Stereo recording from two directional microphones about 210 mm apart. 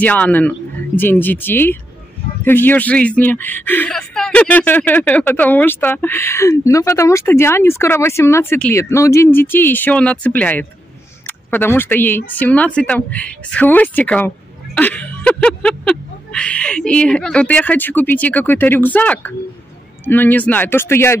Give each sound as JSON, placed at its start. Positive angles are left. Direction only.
{"t": 0.0, "sound": "speech", "side_deg": 5}